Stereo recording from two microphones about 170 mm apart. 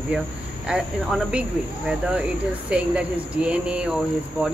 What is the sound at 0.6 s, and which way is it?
A woman's voice, 5° right (ahead or behind).